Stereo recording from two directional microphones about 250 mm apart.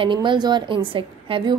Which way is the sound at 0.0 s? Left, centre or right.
Centre.